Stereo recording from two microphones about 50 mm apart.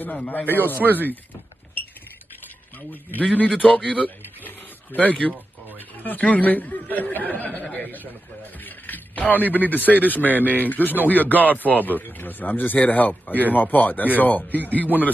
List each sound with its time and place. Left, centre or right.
0.0 s a man's voice: left
2.9 s a man's voice: left
4.5 s a sound: left
6.3 s a man's voice: left
8.5 s a sound: left
9.3 s a man's voice: left